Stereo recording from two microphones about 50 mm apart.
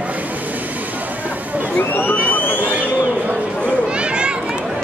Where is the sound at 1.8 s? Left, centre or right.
Left.